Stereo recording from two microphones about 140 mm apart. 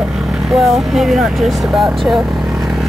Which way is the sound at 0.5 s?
Centre (ahead or behind).